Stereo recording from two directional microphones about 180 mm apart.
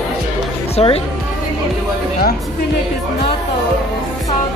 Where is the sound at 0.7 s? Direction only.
35° left (ahead or behind).